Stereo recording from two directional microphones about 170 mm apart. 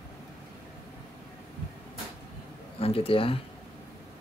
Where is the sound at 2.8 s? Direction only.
35° left (ahead or behind).